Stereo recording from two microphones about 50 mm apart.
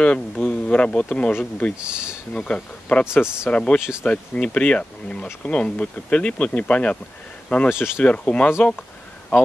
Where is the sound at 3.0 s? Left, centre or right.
Left.